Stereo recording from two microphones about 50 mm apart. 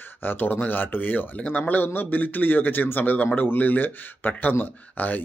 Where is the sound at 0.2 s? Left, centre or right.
Left.